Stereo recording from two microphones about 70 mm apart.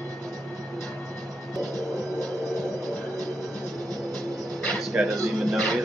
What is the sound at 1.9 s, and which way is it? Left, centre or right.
Music, right.